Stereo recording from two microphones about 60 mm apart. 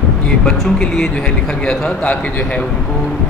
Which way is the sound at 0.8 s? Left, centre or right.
Centre.